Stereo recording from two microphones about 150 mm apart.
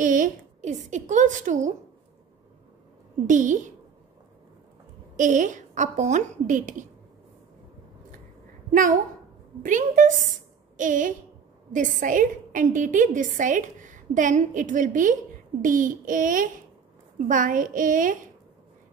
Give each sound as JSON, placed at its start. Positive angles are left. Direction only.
{"t": 0.0, "sound": "a woman's voice", "side_deg": -60}
{"t": 3.3, "sound": "a woman's voice", "side_deg": -55}
{"t": 5.1, "sound": "a woman's voice", "side_deg": -55}
{"t": 8.7, "sound": "a woman's voice", "side_deg": -60}